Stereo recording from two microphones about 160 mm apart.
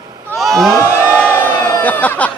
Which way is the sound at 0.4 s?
Centre (ahead or behind).